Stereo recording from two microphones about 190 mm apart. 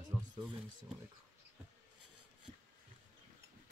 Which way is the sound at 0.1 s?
15° right (ahead or behind).